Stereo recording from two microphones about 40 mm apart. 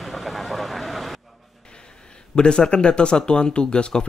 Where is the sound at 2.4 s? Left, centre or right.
Left.